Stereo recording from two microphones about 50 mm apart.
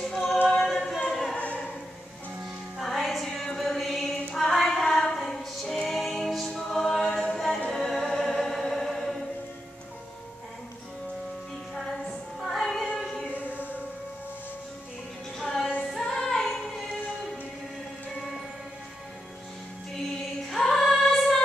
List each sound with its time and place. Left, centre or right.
0.1 s choir: centre
0.7 s music: centre
1.3 s choir: left
2.8 s music: centre
4.3 s female singing: centre
5.9 s a capella: centre
7.7 s music: centre
11.7 s music: centre
12.9 s a sound: centre
13.3 s music: right
15.3 s music: centre
16.0 s female singing: centre
20.4 s female singing: centre